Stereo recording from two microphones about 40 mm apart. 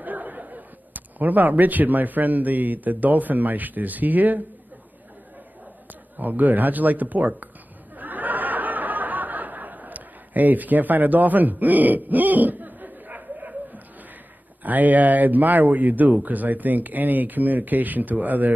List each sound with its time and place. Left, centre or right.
0.0 s speech: right
6.1 s speech: right
8.0 s a sound: right
14.6 s speech: right